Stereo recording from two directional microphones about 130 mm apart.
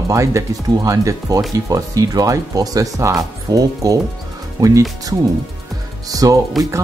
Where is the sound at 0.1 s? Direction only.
25° right (ahead or behind).